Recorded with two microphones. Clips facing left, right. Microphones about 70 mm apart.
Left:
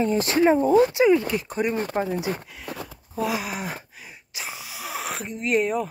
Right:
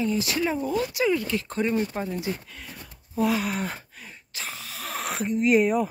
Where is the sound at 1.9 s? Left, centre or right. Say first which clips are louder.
Left 5 dB; left.